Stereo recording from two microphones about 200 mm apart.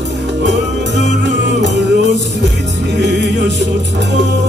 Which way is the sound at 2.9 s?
60° right (ahead or behind).